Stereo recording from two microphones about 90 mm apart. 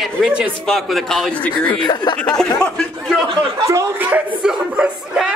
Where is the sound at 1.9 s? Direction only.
55° left (ahead or behind).